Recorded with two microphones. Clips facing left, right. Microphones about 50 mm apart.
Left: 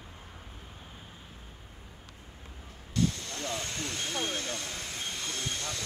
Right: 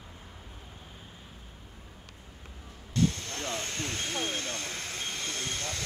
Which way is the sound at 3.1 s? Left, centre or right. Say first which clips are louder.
Right 1 dB; right.